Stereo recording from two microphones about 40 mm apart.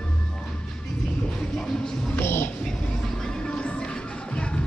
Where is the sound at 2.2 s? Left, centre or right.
Left.